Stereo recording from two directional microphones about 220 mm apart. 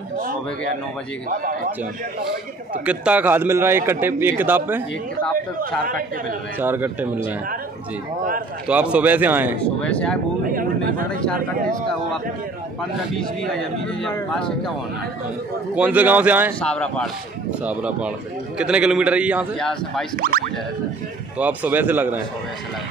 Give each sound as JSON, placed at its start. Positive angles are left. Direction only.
{"t": 1.3, "sound": "speech", "side_deg": -40}
{"t": 2.8, "sound": "a man's voice", "side_deg": -5}
{"t": 6.6, "sound": "a man's voice", "side_deg": -10}
{"t": 8.6, "sound": "a man's voice", "side_deg": -5}
{"t": 9.8, "sound": "a man's voice", "side_deg": 5}
{"t": 10.4, "sound": "speech", "side_deg": -40}
{"t": 13.2, "sound": "a man's voice", "side_deg": 0}
{"t": 15.7, "sound": "a man's voice", "side_deg": -5}
{"t": 16.6, "sound": "a man's voice", "side_deg": 5}
{"t": 17.6, "sound": "a man's voice", "side_deg": -5}
{"t": 20.2, "sound": "speech", "side_deg": -40}
{"t": 21.4, "sound": "a man's voice", "side_deg": -5}